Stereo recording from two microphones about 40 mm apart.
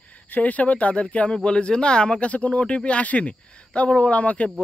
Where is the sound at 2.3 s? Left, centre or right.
Left.